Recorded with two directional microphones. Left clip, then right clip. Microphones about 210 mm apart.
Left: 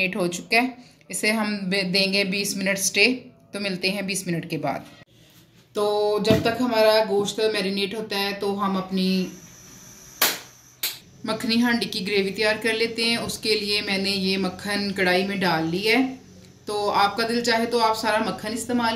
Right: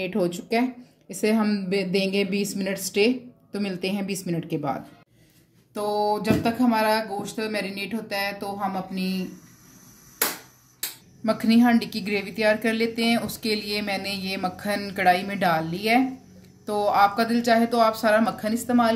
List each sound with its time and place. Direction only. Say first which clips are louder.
0.0 s a woman's voice: left 2 dB; 40° right (ahead or behind)
5.8 s a woman's voice: left 2 dB; 55° right (ahead or behind)
11.2 s a woman's voice: right 2 dB; 50° right (ahead or behind)